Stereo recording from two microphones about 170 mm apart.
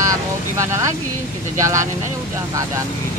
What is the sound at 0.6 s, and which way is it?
Speech, 15° right (ahead or behind).